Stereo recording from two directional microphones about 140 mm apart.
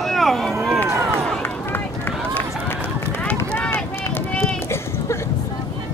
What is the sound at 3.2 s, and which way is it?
Run, 10° left (ahead or behind).